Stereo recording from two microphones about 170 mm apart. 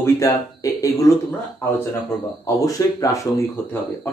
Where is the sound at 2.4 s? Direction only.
20° left (ahead or behind).